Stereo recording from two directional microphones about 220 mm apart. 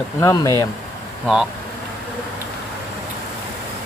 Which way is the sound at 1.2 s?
Centre (ahead or behind).